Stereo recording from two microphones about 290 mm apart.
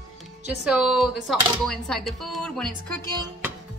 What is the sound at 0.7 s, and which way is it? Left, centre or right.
Speech, centre.